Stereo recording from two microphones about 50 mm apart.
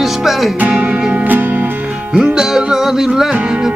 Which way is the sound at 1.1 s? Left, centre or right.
Right.